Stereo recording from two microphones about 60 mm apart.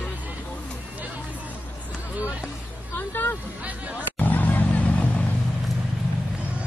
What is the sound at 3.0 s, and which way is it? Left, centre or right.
Hubbub, left.